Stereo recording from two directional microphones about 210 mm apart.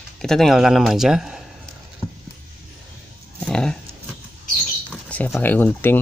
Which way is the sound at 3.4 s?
5° left (ahead or behind).